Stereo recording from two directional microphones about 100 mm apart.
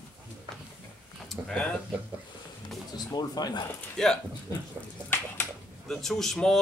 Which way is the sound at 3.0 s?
40° left (ahead or behind).